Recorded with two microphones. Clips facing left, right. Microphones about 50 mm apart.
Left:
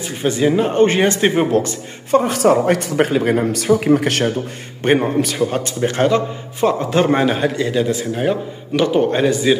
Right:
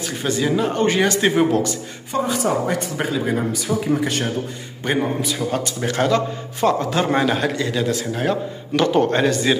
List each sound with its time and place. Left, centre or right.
0.2 s a man's voice: left
1.5 s a man's voice: left
2.0 s speech: left
4.8 s a man's voice: left
8.1 s speech: centre